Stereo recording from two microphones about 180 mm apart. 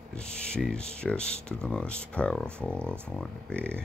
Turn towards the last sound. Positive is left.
turn(degrees=5)  # may be behind; listen again after turning